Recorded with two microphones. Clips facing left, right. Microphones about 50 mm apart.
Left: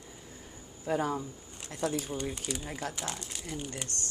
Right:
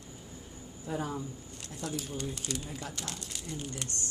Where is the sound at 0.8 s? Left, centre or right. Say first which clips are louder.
Left 5 dB; left.